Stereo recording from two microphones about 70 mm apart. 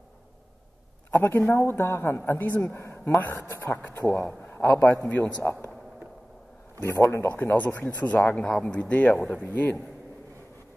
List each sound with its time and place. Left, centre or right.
1.1 s a woman's voice: left
4.1 s a man's voice: centre
4.5 s a sound: left
5.0 s speech: centre
5.4 s a woman's voice: left
6.8 s a man's voice: left